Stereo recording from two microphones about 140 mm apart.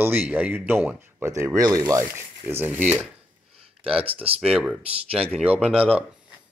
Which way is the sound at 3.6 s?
40° right (ahead or behind).